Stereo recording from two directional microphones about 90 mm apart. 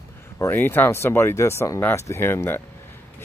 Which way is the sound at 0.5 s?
20° left (ahead or behind).